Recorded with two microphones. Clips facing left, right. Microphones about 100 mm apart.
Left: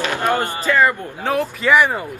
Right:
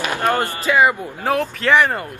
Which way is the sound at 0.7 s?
10° right (ahead or behind).